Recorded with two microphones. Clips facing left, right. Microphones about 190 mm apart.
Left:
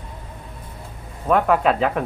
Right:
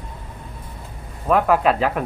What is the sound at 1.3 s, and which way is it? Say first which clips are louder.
Speech: even; centre (ahead or behind).